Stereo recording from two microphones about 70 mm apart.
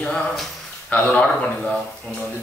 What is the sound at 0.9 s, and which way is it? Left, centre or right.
Speech, left.